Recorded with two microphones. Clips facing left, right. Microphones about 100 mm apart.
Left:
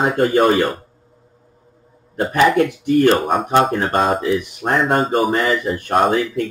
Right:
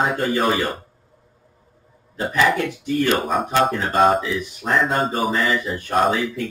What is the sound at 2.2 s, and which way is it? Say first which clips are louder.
Speech: left 5 dB; 55° left (ahead or behind).